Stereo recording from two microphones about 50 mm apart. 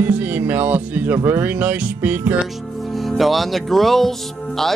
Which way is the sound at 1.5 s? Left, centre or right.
Right.